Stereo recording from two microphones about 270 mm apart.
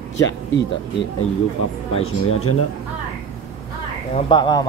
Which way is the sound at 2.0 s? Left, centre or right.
Left.